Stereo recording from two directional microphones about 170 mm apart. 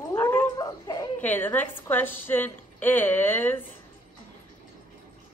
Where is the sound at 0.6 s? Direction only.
25° left (ahead or behind).